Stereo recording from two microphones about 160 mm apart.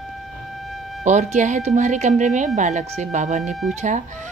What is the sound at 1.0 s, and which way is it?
Speech, 50° right (ahead or behind).